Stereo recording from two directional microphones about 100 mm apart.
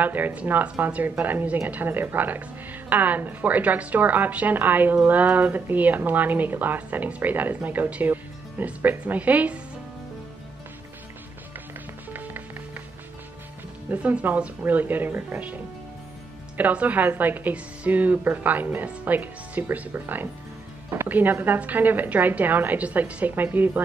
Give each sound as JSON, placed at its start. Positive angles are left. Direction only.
{"t": 0.0, "sound": "a woman's voice", "side_deg": -15}
{"t": 12.1, "sound": "music", "side_deg": -20}
{"t": 13.8, "sound": "speech", "side_deg": -15}